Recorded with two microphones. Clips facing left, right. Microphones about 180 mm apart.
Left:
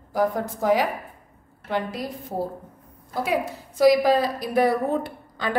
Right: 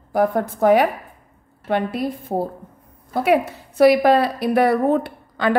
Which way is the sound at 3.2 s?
65° right (ahead or behind).